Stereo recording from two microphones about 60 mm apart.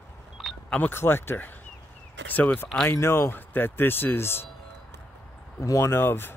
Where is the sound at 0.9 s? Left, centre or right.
Left.